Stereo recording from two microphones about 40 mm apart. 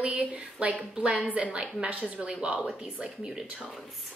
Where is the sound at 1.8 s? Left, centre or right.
Right.